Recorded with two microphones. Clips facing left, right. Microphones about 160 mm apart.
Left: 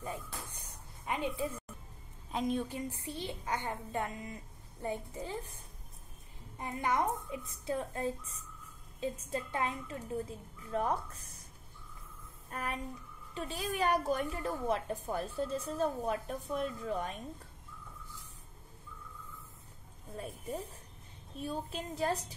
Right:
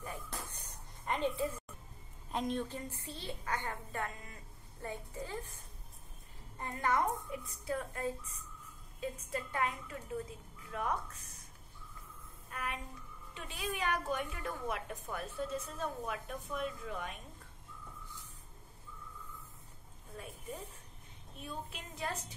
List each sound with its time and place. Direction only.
0.6 s a sound: 10° left (ahead or behind)
2.3 s a woman's voice: 5° left (ahead or behind)
6.6 s a woman's voice: 15° left (ahead or behind); by 11.3 s 35° left (ahead or behind)
12.4 s a sound: 35° left (ahead or behind)
13.3 s a woman's voice: 35° left (ahead or behind)
21.4 s a woman's voice: 35° left (ahead or behind)